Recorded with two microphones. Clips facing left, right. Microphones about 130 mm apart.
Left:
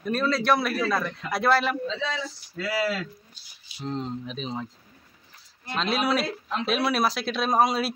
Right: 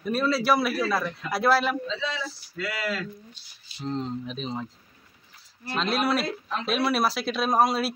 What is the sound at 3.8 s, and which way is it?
Speech, centre (ahead or behind).